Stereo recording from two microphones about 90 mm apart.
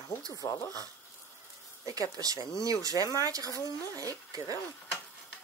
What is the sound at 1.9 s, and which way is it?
Speech, 40° right (ahead or behind).